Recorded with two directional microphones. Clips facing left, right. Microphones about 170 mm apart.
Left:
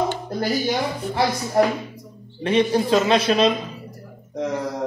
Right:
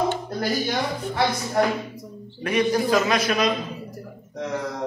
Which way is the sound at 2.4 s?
25° left (ahead or behind).